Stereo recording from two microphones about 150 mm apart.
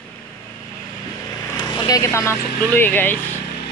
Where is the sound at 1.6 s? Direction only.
25° left (ahead or behind).